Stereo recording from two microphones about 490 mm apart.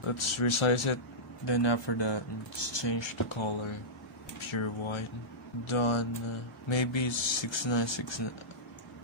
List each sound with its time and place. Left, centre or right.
0.0 s speech: left
1.4 s speech: left
6.7 s speech: left